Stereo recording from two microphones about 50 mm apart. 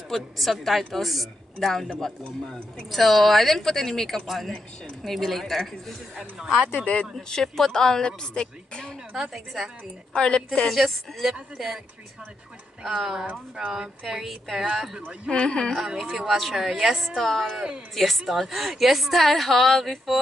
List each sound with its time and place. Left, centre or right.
0.1 s speech: centre
6.8 s a woman's voice: left
7.2 s a woman's voice: centre
9.3 s speech: centre
10.1 s a woman's voice: centre
10.7 s speech: centre
12.8 s speech: centre
15.3 s a woman's voice: centre
16.0 s speech: centre